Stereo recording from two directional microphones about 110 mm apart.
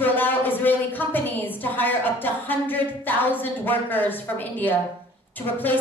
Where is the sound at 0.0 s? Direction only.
15° left (ahead or behind).